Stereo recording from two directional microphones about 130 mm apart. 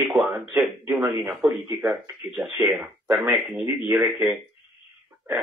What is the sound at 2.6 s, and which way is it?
Speech, 20° right (ahead or behind).